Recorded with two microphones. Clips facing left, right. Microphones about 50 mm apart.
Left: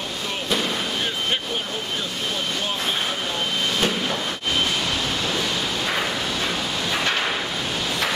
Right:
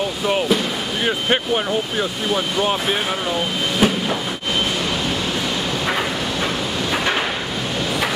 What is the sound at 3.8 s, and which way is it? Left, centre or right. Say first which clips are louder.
Train: right 8 dB; centre.